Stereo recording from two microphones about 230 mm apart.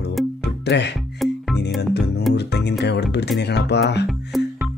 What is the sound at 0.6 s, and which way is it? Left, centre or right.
Speech, left.